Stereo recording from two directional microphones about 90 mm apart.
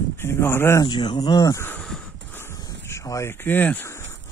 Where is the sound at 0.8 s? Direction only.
55° left (ahead or behind).